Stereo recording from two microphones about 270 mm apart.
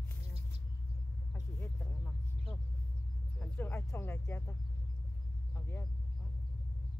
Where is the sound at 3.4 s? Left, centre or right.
Centre.